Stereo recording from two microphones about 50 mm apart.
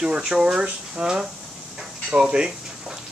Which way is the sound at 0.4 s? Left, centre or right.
Centre.